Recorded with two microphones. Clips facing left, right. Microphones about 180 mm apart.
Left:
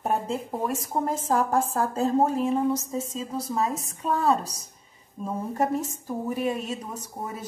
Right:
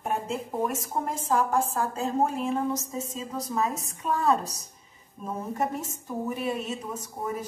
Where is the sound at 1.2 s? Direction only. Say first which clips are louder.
Right 1 dB; 35° left (ahead or behind).